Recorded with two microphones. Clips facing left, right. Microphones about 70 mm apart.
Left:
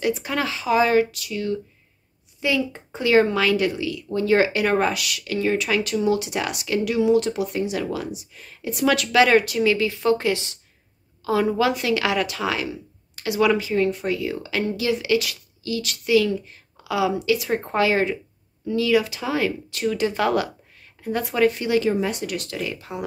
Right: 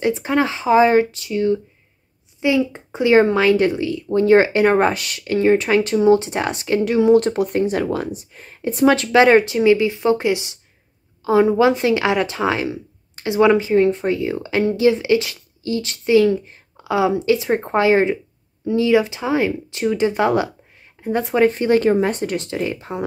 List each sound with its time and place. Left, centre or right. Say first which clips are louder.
0.0 s speech: right 5 dB; right